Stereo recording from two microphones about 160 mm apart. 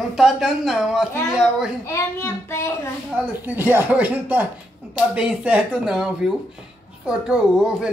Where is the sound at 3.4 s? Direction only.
10° right (ahead or behind).